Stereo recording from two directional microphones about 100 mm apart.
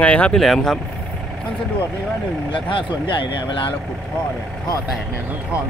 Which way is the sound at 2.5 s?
55° left (ahead or behind).